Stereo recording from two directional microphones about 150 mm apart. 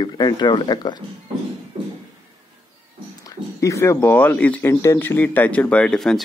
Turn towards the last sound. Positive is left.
turn(degrees=5)  # may be behind; listen again after turning